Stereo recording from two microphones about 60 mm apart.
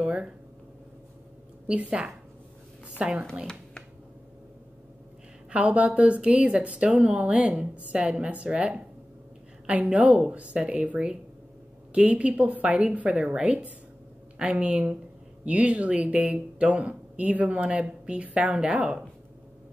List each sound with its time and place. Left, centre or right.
0.0 s a sound: centre
1.7 s speech: centre
5.5 s speech: centre